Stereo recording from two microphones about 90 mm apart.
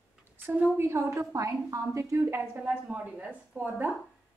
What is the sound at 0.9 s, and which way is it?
A woman's voice, 30° right (ahead or behind).